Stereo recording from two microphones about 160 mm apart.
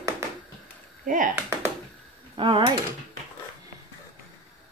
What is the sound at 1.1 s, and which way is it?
Speech, 55° right (ahead or behind).